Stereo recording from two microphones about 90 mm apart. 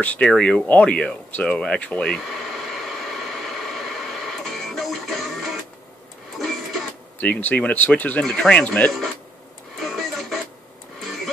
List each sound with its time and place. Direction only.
0.0 s a sound: 15° left (ahead or behind)
6.3 s printer: centre (ahead or behind)
7.2 s speech: 15° left (ahead or behind)
9.8 s vehicle: centre (ahead or behind)